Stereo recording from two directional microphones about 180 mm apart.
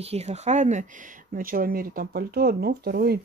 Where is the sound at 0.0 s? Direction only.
35° right (ahead or behind).